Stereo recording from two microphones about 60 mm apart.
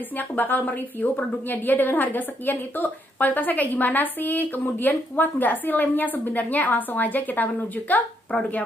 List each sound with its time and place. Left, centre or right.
0.2 s a woman's voice: left